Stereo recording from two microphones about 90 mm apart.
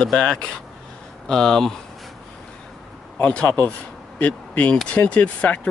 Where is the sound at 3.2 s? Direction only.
15° left (ahead or behind).